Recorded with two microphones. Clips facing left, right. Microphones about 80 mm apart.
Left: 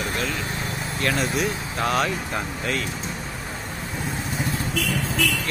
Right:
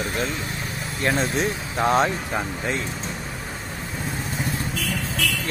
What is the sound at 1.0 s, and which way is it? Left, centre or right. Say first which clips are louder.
Speech: right 1 dB; right.